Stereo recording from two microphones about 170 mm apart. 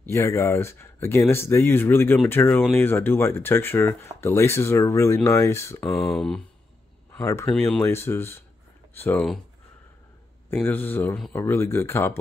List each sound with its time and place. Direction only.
0.0 s speech: 15° left (ahead or behind)
5.9 s speech: centre (ahead or behind)
7.2 s speech: 20° left (ahead or behind)
10.5 s speech: 10° left (ahead or behind)